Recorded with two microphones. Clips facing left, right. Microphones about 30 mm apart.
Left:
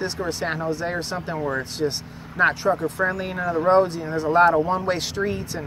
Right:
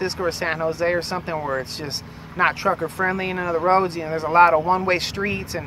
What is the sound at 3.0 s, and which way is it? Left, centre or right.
Speech, right.